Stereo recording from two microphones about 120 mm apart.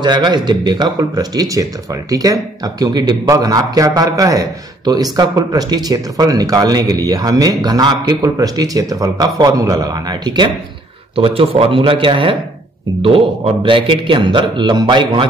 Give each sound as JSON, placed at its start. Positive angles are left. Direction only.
{"t": 0.0, "sound": "speech", "side_deg": -40}
{"t": 11.1, "sound": "a man's voice", "side_deg": -50}